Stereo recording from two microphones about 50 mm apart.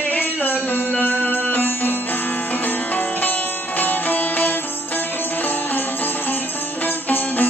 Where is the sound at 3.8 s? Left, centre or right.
Left.